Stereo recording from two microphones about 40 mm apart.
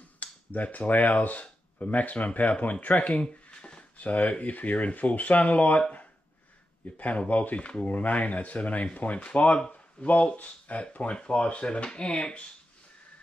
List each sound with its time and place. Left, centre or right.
0.2 s speech: left
3.1 s a sound: left
4.0 s speech: left